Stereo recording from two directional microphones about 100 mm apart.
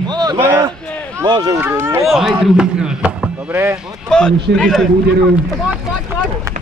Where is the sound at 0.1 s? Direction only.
40° right (ahead or behind).